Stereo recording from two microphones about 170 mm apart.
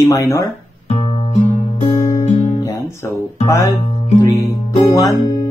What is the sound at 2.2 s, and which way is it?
Guitar, 40° left (ahead or behind).